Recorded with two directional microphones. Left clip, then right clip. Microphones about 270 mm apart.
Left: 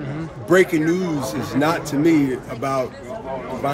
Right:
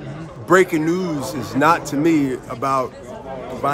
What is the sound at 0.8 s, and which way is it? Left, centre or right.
A man's voice, centre.